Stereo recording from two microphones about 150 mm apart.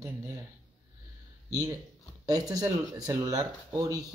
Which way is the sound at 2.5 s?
25° right (ahead or behind).